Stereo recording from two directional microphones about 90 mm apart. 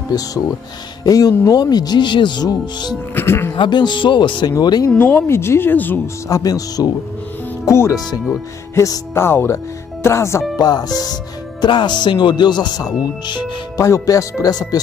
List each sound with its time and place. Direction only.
1.0 s speech: 40° left (ahead or behind)
3.2 s speech: 25° left (ahead or behind)
3.5 s speech: 60° left (ahead or behind)
4.8 s speech: 25° left (ahead or behind)
6.2 s speech: 40° left (ahead or behind)
10.6 s speech: 50° left (ahead or behind)
11.6 s speech: 55° left (ahead or behind)
13.7 s speech: 35° left (ahead or behind)